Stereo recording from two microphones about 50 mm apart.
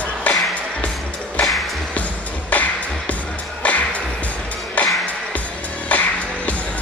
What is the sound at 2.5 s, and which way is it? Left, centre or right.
Music, left.